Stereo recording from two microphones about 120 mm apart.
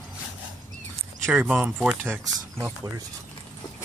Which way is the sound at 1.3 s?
10° right (ahead or behind).